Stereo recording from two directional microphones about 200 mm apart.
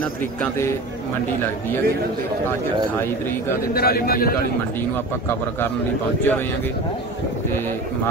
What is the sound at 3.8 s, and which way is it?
Speech, 50° left (ahead or behind).